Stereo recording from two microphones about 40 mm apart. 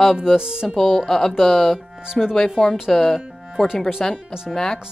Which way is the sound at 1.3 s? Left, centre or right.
Centre.